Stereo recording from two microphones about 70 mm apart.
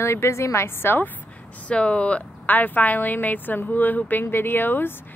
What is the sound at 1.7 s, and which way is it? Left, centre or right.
A woman's voice, centre.